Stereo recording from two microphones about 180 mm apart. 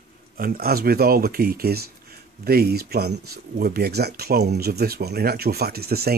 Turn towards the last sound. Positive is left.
turn(degrees=-60)  # may be behind; listen again after turning